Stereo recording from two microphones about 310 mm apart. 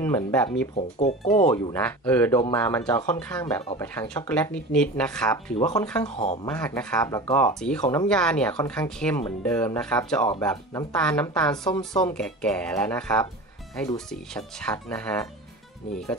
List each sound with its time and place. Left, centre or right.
0.0 s speech: centre
0.7 s speech: left
1.7 s speech: centre
6.0 s speech: centre
6.5 s speech: centre
8.1 s speech: centre